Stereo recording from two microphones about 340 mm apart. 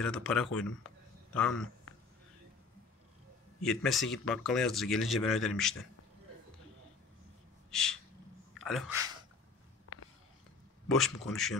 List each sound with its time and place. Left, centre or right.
0.0 s speech: centre
3.6 s speech: centre
7.7 s a sound: centre
8.5 s speech: centre
9.9 s a sound: left
10.9 s speech: centre